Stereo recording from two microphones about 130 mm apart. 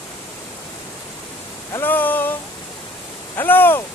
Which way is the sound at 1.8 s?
15° left (ahead or behind).